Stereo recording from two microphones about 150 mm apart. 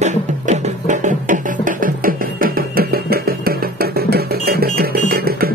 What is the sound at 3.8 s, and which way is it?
Music, 90° right.